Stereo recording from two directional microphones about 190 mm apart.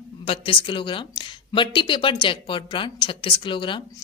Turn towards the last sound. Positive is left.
turn(degrees=25)  # may be behind; listen again after turning